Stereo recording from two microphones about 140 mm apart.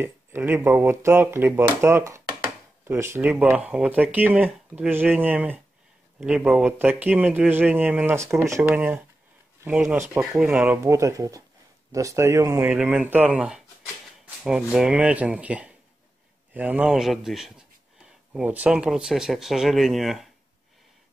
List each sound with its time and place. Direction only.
0.0 s speech: 15° right (ahead or behind)
3.2 s speech: 10° right (ahead or behind)